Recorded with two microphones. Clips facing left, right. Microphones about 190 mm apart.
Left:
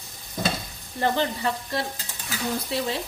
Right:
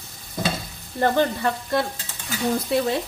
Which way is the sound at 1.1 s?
55° right (ahead or behind).